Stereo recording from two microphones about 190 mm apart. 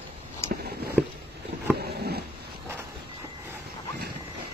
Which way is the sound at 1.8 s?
55° right (ahead or behind).